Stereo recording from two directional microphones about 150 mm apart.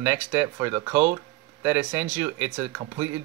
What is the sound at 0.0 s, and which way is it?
Speech, 15° right (ahead or behind).